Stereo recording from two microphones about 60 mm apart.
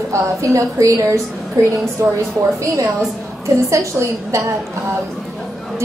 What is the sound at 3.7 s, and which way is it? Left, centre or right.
Speech, right.